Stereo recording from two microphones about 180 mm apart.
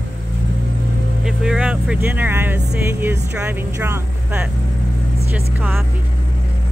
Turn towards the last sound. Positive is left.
turn(degrees=-10)  # may be behind; listen again after turning